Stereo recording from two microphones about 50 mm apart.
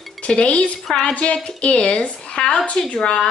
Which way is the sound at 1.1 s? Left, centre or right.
Left.